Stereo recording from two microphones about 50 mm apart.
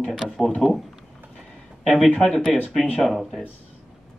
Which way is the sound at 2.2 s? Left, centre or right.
Centre.